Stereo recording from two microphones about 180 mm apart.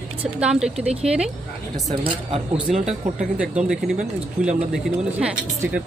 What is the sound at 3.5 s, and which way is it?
Speech, centre (ahead or behind).